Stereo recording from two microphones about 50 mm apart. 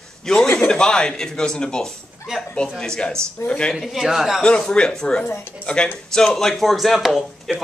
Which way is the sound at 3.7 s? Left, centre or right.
Centre.